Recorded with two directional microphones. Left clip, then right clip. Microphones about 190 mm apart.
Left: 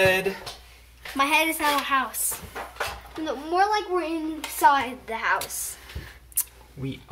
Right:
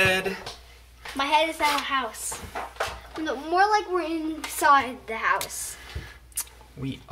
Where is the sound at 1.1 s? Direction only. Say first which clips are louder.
Left 1 dB; 35° left (ahead or behind).